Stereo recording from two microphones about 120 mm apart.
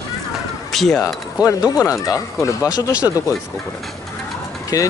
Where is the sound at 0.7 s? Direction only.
Centre (ahead or behind).